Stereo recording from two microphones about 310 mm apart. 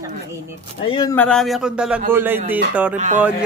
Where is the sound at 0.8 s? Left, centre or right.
Centre.